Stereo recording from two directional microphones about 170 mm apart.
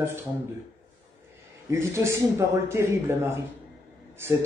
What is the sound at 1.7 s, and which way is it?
A man's voice, 15° right (ahead or behind).